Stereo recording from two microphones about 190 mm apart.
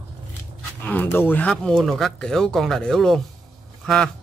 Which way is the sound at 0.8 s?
10° left (ahead or behind).